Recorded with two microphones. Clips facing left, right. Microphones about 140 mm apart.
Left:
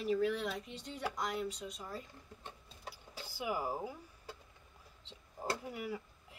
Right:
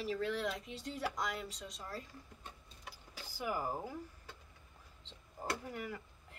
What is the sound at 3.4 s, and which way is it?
Speech, 10° left (ahead or behind).